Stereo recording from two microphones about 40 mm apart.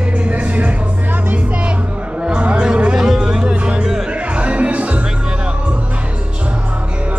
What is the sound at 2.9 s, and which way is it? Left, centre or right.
Music, centre.